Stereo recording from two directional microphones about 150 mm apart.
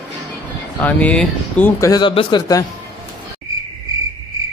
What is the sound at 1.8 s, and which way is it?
Speech, 25° left (ahead or behind).